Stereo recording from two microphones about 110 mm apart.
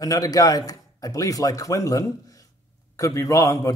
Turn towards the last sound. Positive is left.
turn(degrees=30)  # may be behind; listen again after turning